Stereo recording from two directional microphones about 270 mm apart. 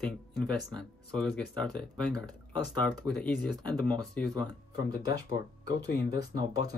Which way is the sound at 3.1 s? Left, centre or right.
Centre.